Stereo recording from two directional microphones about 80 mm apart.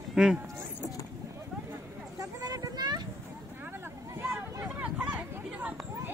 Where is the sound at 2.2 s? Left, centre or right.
Right.